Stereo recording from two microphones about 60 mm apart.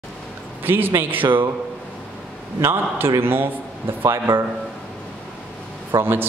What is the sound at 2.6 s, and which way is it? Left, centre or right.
A man's voice, right.